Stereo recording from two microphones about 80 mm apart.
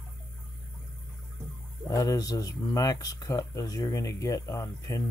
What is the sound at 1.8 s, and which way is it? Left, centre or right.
Speech, left.